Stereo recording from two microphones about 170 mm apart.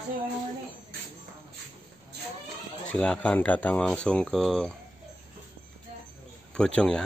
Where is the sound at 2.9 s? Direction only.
5° left (ahead or behind).